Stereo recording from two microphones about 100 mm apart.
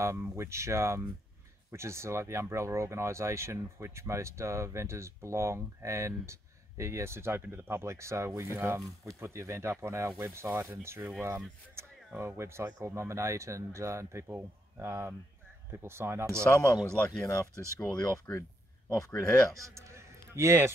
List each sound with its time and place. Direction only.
0.0 s speech: 25° right (ahead or behind)
16.8 s speech: 10° left (ahead or behind)
18.9 s speech: 30° left (ahead or behind)
19.5 s a man's voice: 30° right (ahead or behind)